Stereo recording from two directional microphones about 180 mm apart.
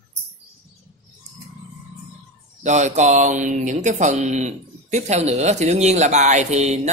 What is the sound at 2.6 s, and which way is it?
Speech, 40° right (ahead or behind).